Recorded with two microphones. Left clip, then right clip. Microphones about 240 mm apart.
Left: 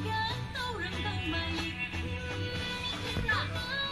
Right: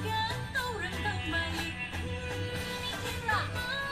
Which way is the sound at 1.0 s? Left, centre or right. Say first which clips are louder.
Right 4 dB; right.